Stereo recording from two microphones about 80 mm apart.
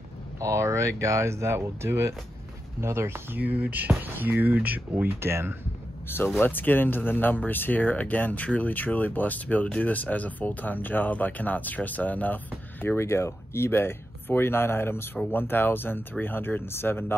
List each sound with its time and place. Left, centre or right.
0.4 s speech: right
3.3 s speech: centre
6.0 s speech: left
12.8 s speech: left